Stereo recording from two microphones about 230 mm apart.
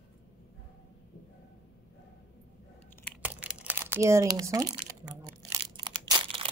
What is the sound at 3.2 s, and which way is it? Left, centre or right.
Crumpling, centre.